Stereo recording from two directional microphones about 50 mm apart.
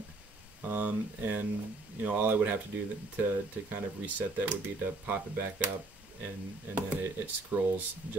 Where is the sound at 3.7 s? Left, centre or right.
Right.